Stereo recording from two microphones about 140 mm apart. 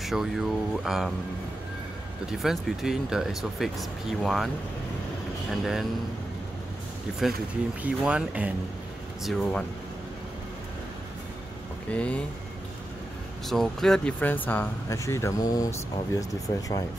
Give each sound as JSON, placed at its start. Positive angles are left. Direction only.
{"t": 0.0, "sound": "speech", "side_deg": 0}
{"t": 2.3, "sound": "speech", "side_deg": 0}
{"t": 5.5, "sound": "speech", "side_deg": 0}
{"t": 7.1, "sound": "speech", "side_deg": -5}
{"t": 9.2, "sound": "speech", "side_deg": 5}
{"t": 11.9, "sound": "speech", "side_deg": 10}
{"t": 13.5, "sound": "speech", "side_deg": 5}